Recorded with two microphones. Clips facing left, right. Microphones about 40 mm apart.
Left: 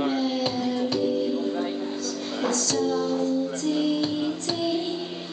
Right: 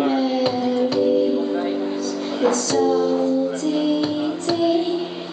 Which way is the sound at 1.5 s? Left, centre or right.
Right.